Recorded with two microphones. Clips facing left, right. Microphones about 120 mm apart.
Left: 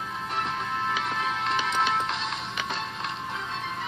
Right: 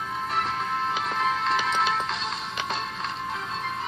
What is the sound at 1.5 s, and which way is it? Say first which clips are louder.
Music: right 1 dB; 40° right (ahead or behind).